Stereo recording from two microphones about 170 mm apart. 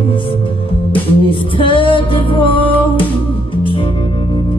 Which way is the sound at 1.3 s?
30° left (ahead or behind).